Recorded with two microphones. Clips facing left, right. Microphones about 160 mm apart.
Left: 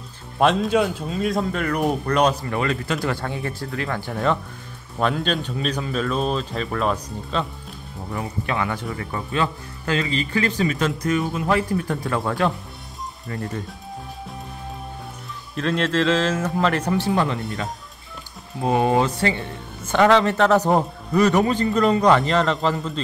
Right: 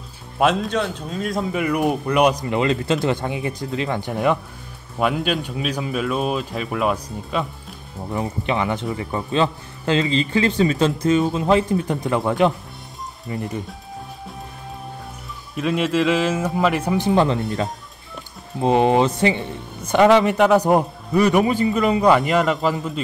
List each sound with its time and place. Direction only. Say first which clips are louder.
0.4 s speech: left 1 dB; centre (ahead or behind)
8.1 s speech: right 4 dB; 20° right (ahead or behind)
15.5 s speech: right 2 dB; 10° right (ahead or behind)
18.6 s speech: right 3 dB; 20° right (ahead or behind)